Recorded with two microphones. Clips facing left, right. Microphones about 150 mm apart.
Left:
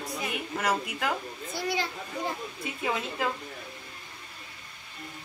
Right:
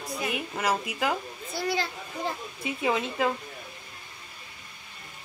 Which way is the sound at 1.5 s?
15° left (ahead or behind).